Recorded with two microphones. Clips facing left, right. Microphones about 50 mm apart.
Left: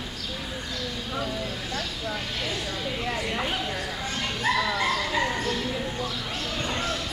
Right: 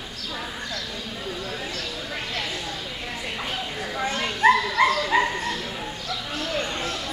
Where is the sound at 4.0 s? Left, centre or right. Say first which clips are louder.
Right 12 dB; right.